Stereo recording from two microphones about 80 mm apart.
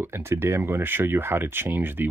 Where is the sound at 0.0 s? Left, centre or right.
Right.